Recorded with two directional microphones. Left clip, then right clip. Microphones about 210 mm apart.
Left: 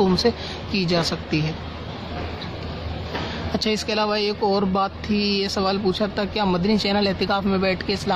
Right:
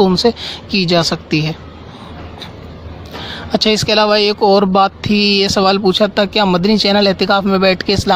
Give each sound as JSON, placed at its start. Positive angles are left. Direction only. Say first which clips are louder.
{"t": 0.0, "sound": "speech", "louder": "right 8 dB", "side_deg": -40}
{"t": 3.5, "sound": "speech", "louder": "right 11 dB", "side_deg": -40}